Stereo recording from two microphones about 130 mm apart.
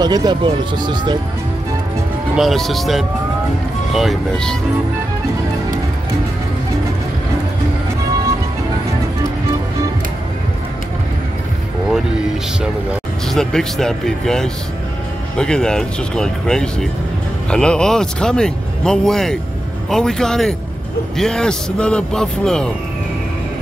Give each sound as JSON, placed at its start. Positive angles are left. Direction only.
{"t": 0.0, "sound": "speech", "side_deg": -30}
{"t": 2.3, "sound": "speech", "side_deg": 0}
{"t": 13.3, "sound": "speech", "side_deg": 5}